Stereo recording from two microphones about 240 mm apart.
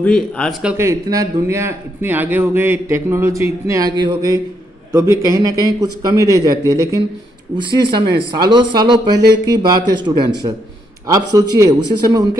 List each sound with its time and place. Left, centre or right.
0.0 s a man's voice: centre